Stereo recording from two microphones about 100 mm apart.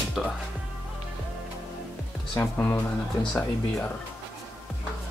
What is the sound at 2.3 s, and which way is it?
Speech, 25° left (ahead or behind).